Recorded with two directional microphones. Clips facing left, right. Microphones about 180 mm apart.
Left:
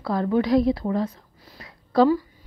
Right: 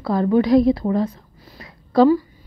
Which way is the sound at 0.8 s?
35° right (ahead or behind).